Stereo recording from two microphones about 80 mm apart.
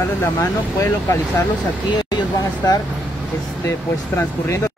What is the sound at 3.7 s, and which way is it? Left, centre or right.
Speech, left.